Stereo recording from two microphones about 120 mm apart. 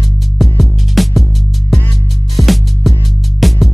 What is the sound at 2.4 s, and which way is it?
Music, centre (ahead or behind).